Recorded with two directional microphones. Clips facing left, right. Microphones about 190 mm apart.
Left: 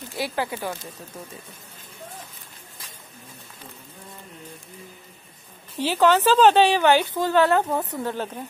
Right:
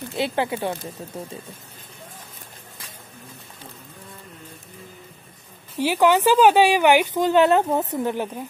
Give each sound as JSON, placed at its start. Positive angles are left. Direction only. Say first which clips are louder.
{"t": 0.1, "sound": "speech", "louder": "right 4 dB", "side_deg": -20}
{"t": 5.8, "sound": "a woman's voice", "louder": "right 1 dB", "side_deg": -15}